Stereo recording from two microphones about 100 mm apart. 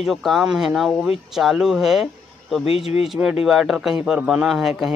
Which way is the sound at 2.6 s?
80° left.